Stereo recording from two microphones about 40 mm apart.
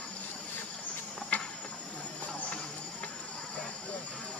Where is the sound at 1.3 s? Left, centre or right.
Left.